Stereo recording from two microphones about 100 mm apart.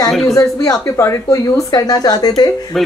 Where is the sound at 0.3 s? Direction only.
35° left (ahead or behind).